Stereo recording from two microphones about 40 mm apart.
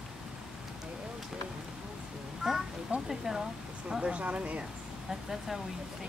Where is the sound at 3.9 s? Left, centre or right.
Right.